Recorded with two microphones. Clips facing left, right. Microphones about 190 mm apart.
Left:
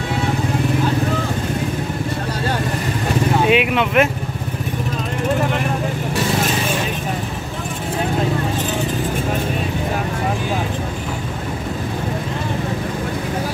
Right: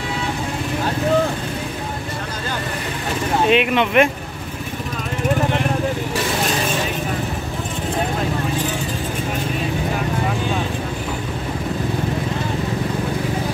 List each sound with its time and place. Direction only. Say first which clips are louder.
3.4 s speech: even; 5° left (ahead or behind)